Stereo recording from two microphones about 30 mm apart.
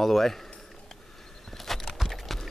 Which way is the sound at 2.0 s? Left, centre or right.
Centre.